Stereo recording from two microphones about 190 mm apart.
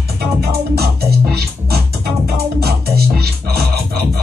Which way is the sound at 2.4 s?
55° right (ahead or behind).